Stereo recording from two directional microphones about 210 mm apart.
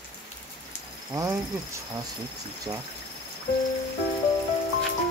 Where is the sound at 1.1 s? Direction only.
15° right (ahead or behind).